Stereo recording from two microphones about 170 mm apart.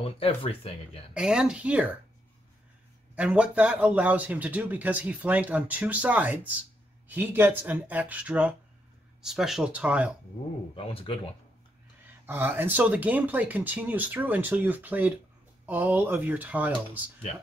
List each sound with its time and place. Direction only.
0.0 s speech: 35° left (ahead or behind)
1.1 s speech: 5° right (ahead or behind)
3.2 s speech: 5° right (ahead or behind)
10.7 s speech: 30° left (ahead or behind)
12.3 s speech: 15° right (ahead or behind)
17.3 s speech: 35° left (ahead or behind)